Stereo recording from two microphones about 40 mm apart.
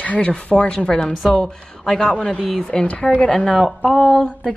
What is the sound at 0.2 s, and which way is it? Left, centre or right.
Speech, left.